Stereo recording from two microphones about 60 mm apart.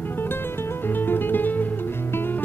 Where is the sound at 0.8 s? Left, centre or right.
Left.